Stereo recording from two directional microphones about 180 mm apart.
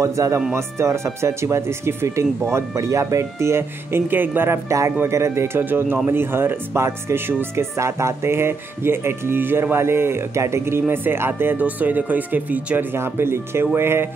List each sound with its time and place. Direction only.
0.0 s speech: 15° right (ahead or behind)